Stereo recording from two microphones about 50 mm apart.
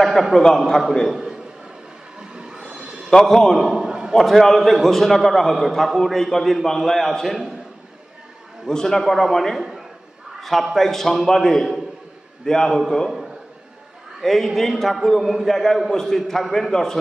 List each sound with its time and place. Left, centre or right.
0.0 s a man's voice: centre
1.0 s a man's voice: centre
2.3 s train: centre
3.1 s a man's voice: centre
3.6 s a sound: centre
4.1 s a man's voice: centre
8.6 s a man's voice: centre
9.6 s a man's voice: centre
14.2 s a man's voice: centre